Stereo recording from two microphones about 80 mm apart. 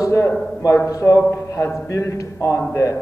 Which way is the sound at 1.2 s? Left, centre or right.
Left.